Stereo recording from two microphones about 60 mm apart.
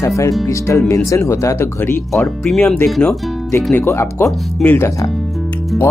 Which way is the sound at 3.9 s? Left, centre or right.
Left.